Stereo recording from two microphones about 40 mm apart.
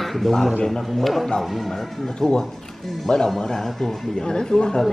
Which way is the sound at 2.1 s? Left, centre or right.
Centre.